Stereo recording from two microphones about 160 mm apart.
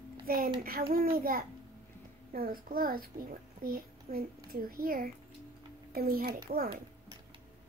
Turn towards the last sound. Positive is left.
turn(degrees=-65)  # may be behind; listen again after turning